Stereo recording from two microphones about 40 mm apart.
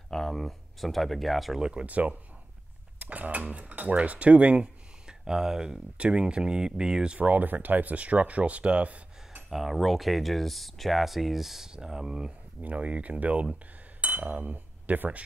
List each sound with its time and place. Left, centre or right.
0.1 s speech: centre
1.6 s speech: right
1.9 s speech: right
5.0 s speech: centre
5.9 s speech: right
7.2 s speech: right
9.5 s speech: centre
12.6 s speech: right
14.0 s cutlery: right